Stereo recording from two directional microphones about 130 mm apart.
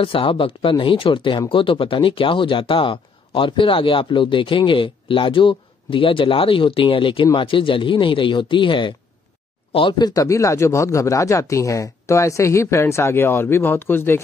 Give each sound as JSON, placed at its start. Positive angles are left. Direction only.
{"t": 0.0, "sound": "speech", "side_deg": 45}